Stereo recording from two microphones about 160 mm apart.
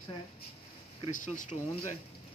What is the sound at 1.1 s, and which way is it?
Speech, 55° left (ahead or behind).